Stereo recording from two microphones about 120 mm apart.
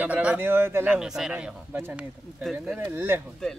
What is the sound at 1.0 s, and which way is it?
Speech, 5° right (ahead or behind).